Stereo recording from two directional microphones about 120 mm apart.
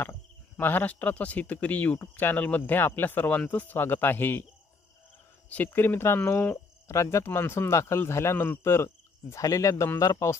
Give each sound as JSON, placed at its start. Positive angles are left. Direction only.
{"t": 0.0, "sound": "speech", "side_deg": 15}
{"t": 5.5, "sound": "speech", "side_deg": 15}